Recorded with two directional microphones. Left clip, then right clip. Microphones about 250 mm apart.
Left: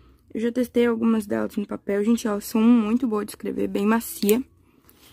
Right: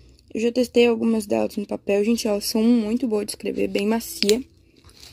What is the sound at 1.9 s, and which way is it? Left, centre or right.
Speech, left.